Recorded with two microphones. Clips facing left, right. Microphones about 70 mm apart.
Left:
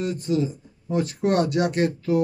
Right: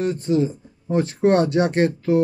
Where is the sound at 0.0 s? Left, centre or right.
Right.